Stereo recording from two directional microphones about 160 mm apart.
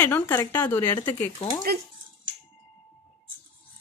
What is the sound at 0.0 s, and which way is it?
Speech, 15° left (ahead or behind).